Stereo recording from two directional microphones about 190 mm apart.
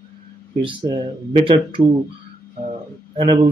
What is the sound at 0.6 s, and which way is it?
Speech, 25° right (ahead or behind).